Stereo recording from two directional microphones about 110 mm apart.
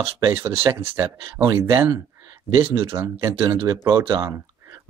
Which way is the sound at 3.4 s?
50° right (ahead or behind).